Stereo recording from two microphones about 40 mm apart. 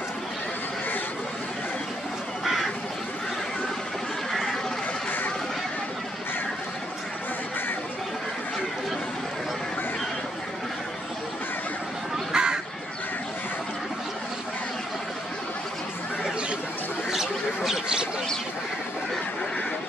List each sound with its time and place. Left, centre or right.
2.4 s crow: centre
12.3 s crow: centre